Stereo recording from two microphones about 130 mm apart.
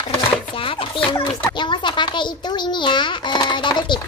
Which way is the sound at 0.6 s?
45° left (ahead or behind).